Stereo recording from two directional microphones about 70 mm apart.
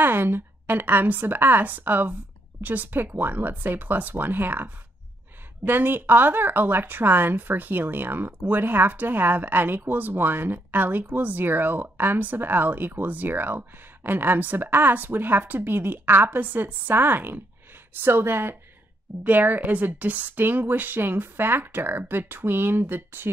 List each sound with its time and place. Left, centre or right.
0.0 s speech: right